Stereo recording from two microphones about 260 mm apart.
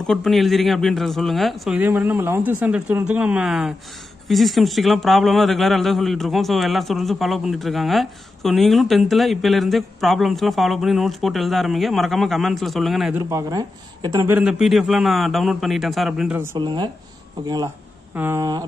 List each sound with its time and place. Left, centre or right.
0.0 s speech: centre
13.3 s speech: centre
16.5 s speech: centre
18.1 s speech: centre